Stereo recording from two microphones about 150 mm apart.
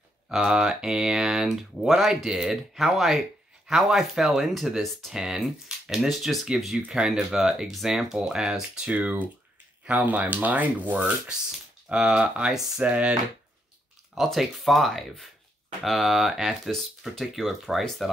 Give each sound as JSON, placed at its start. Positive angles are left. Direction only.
{"t": 0.3, "sound": "speech", "side_deg": -5}
{"t": 14.1, "sound": "speech", "side_deg": 0}